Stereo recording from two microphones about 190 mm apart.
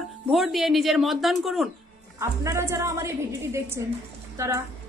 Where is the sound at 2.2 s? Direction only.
15° right (ahead or behind).